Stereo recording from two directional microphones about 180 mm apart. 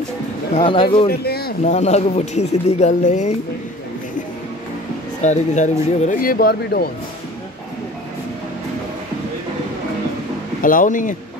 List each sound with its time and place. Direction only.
0.6 s speech: 30° left (ahead or behind)
1.0 s speech: 60° left (ahead or behind)
1.6 s speech: 40° left (ahead or behind)
5.2 s speech: 40° left (ahead or behind); by 6.9 s 60° left (ahead or behind)
10.6 s speech: 50° left (ahead or behind)